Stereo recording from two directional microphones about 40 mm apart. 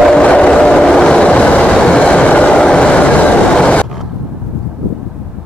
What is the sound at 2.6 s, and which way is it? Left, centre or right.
Vehicle, left.